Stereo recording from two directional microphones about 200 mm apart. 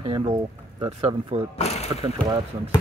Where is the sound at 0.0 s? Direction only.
25° right (ahead or behind).